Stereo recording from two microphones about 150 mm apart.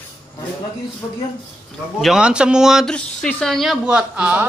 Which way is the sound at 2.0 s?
5° right (ahead or behind).